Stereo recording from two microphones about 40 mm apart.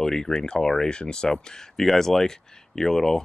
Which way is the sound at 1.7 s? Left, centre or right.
Centre.